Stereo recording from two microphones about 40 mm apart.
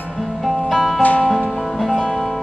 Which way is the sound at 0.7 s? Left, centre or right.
Centre.